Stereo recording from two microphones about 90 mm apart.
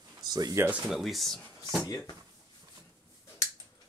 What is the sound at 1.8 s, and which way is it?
Speech, 45° left (ahead or behind).